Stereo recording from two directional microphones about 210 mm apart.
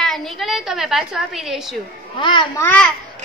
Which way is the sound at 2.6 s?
10° left (ahead or behind).